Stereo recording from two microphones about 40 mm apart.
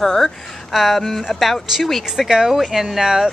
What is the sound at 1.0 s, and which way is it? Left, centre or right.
Speech, centre.